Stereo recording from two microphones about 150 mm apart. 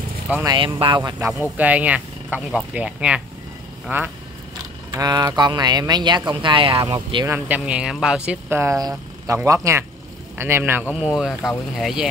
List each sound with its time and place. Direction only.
0.5 s speech: 35° right (ahead or behind)
1.2 s speech: 10° right (ahead or behind)
4.9 s speech: 25° right (ahead or behind)
7.2 s speech: 10° right (ahead or behind)